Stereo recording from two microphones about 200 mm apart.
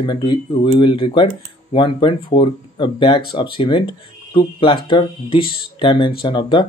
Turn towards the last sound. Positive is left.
turn(degrees=20)  # may be behind; listen again after turning